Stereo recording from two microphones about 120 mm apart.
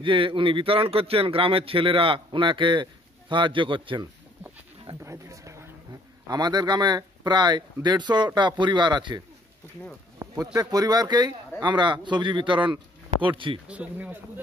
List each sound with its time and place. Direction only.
0.0 s speech: 45° right (ahead or behind)
5.0 s a sound: 25° right (ahead or behind)
6.2 s speech: 35° right (ahead or behind)
13.7 s speech: 10° right (ahead or behind)